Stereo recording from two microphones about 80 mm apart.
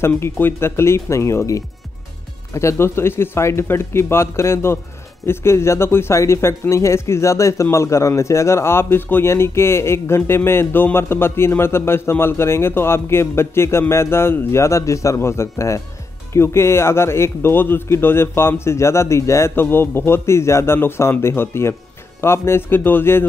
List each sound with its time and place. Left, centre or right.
0.0 s a man's voice: left